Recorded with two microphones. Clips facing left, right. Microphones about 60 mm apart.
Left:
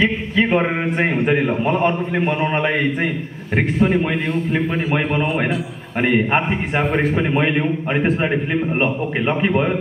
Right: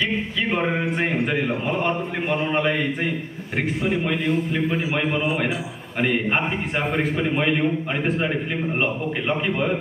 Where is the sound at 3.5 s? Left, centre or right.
Left.